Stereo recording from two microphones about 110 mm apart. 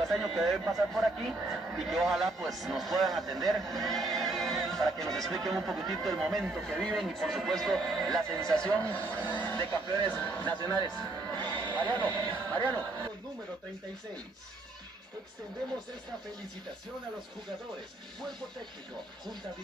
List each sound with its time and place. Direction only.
0.0 s a man's voice: centre (ahead or behind)
11.3 s speech: 45° right (ahead or behind)
11.6 s speech: 15° left (ahead or behind)
12.3 s music: 15° left (ahead or behind)